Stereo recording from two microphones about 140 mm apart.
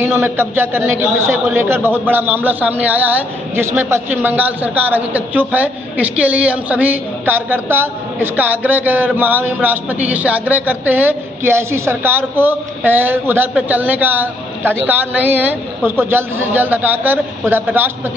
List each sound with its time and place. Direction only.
0.0 s a woman's voice: 15° right (ahead or behind)